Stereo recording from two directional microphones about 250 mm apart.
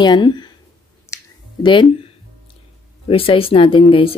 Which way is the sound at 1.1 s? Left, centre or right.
Centre.